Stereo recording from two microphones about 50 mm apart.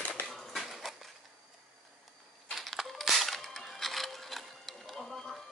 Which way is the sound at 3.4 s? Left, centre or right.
Centre.